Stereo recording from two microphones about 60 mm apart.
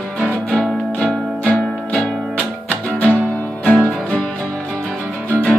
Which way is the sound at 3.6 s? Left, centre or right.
Left.